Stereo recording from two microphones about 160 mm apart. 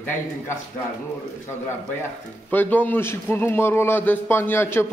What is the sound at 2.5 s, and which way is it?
A man's voice, 10° left (ahead or behind).